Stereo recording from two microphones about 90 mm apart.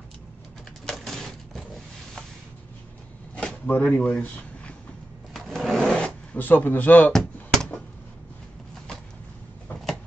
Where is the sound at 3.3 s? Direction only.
15° left (ahead or behind).